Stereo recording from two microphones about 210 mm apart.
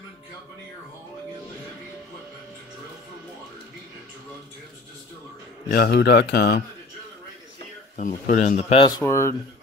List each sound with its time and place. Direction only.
5.7 s speech: 50° left (ahead or behind)
8.0 s speech: 35° left (ahead or behind); by 9.3 s 15° left (ahead or behind)